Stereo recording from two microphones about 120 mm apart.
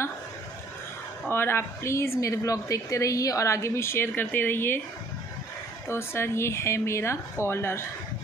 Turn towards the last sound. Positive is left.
turn(degrees=20)  # may be behind; listen again after turning